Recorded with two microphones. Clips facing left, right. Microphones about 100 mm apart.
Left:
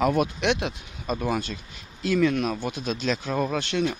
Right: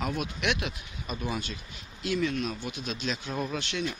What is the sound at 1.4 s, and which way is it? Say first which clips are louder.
Speech: left 4 dB; 40° left (ahead or behind).